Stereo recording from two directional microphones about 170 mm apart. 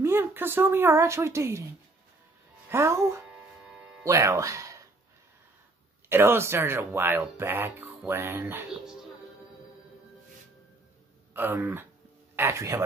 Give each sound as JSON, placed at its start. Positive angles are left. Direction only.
{"t": 0.0, "sound": "speech", "side_deg": -15}
{"t": 2.7, "sound": "speech", "side_deg": -15}
{"t": 6.0, "sound": "speech", "side_deg": -15}
{"t": 11.3, "sound": "speech", "side_deg": -10}